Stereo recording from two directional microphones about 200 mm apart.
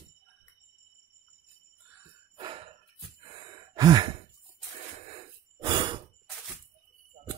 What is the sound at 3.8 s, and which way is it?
Sigh, 20° right (ahead or behind).